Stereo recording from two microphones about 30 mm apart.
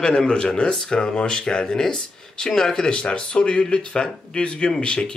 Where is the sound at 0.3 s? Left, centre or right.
Left.